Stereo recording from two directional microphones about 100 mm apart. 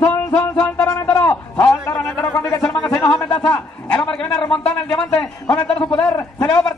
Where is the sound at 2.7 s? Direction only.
5° left (ahead or behind).